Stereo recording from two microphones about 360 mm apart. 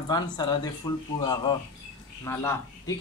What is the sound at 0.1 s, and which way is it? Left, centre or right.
Speech, centre.